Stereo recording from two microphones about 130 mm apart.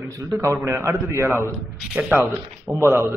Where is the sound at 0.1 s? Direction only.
25° right (ahead or behind).